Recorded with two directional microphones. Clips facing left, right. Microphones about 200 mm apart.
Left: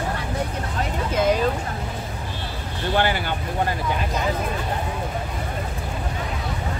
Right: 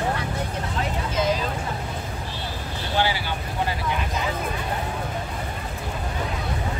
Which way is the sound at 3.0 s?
55° left (ahead or behind).